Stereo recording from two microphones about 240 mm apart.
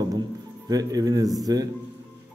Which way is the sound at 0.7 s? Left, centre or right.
Centre.